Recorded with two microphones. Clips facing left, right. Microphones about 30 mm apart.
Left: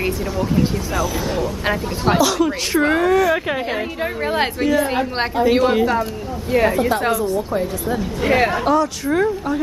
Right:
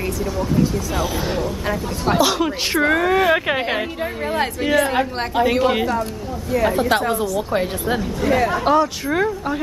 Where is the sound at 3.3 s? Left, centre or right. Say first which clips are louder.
Right 2 dB; right.